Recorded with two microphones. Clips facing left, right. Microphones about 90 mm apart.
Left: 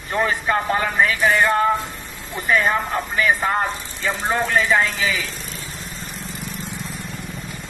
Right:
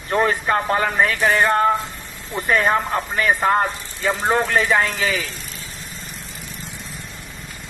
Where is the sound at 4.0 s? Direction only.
40° right (ahead or behind).